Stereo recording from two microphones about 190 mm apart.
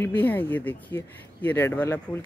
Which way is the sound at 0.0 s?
10° left (ahead or behind).